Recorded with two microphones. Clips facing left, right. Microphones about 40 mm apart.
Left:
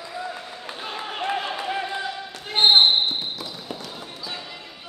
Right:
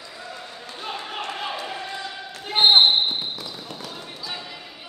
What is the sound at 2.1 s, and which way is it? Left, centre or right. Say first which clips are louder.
Basketball bounce: even; centre.